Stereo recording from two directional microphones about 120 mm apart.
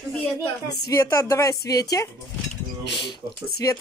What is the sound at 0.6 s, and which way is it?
A woman's voice, 25° left (ahead or behind).